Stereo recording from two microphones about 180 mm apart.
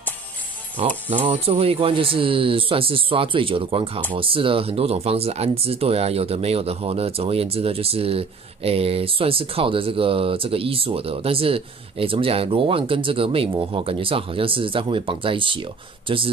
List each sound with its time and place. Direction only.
0.8 s speech: 35° right (ahead or behind)